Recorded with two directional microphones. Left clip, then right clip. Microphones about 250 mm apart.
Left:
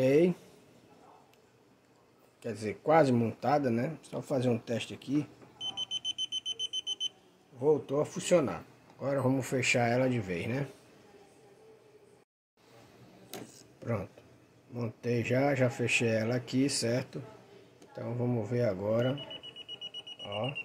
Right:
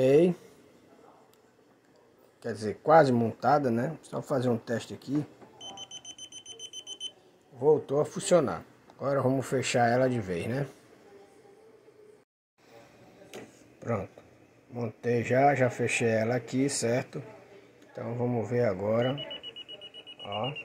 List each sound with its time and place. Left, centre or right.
0.0 s a sound: centre
2.4 s speech: centre
5.6 s smoke detector: left
7.5 s speech: centre
14.8 s speech: centre
20.2 s speech: centre